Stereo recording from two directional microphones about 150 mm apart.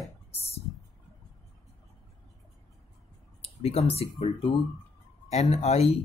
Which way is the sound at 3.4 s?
40° left (ahead or behind).